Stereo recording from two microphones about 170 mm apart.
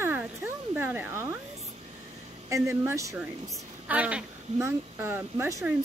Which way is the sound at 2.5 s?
15° right (ahead or behind).